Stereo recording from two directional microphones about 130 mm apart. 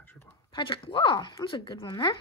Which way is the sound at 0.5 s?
40° left (ahead or behind).